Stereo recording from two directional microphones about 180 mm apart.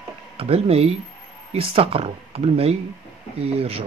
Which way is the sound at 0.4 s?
35° right (ahead or behind).